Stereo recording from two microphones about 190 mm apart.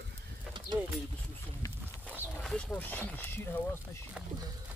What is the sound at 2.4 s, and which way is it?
Speech, 5° left (ahead or behind).